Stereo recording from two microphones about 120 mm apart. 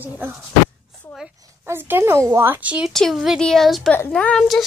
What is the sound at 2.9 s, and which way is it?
Speech, centre (ahead or behind).